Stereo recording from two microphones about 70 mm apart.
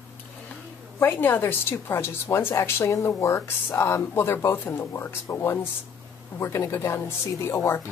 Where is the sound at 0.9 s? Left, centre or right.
Left.